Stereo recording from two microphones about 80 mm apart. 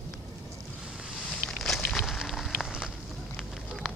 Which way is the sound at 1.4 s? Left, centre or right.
Centre.